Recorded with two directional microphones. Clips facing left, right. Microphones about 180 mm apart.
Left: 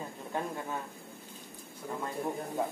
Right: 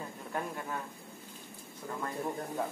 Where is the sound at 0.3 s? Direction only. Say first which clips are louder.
Left 2 dB; 25° left (ahead or behind).